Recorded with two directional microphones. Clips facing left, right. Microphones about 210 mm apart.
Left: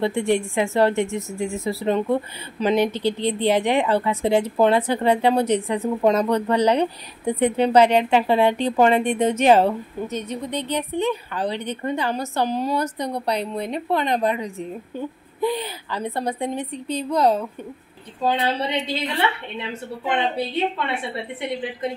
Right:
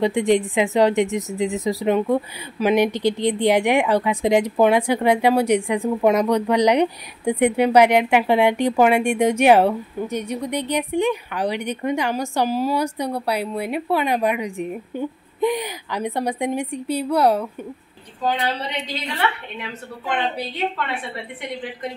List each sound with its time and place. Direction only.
0.0 s a woman's voice: 15° right (ahead or behind)
18.2 s a woman's voice: 25° left (ahead or behind)
20.2 s a woman's voice: 25° left (ahead or behind)